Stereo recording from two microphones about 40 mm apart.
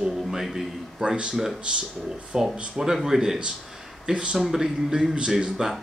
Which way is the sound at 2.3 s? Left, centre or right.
Centre.